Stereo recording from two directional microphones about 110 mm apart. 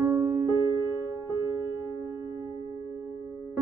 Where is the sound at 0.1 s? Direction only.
20° right (ahead or behind).